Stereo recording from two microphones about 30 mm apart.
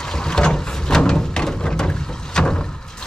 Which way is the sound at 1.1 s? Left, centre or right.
Left.